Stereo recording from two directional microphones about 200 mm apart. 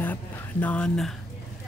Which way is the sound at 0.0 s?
10° left (ahead or behind).